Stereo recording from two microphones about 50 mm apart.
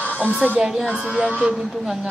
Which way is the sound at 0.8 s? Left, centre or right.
Right.